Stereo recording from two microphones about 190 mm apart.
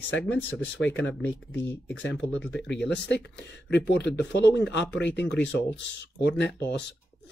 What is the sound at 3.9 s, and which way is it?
Speech, 65° left (ahead or behind).